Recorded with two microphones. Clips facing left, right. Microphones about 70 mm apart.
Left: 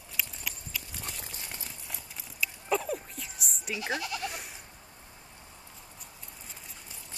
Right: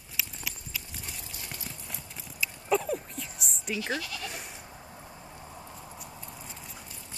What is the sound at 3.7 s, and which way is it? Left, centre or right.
Speech, left.